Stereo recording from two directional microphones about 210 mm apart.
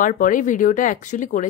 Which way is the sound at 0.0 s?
40° left (ahead or behind).